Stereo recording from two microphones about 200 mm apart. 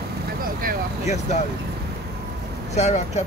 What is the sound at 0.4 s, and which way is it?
Vehicle, 45° right (ahead or behind).